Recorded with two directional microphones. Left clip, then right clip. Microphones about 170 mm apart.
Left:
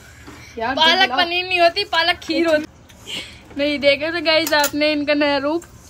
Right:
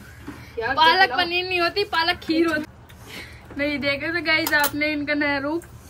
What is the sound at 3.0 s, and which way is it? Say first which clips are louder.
A woman's voice: left 8 dB; 10° left (ahead or behind).